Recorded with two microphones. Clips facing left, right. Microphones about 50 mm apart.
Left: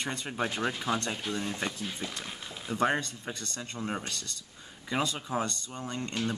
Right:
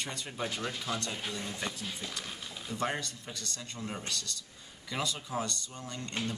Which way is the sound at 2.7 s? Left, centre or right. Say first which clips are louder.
Left 6 dB; left.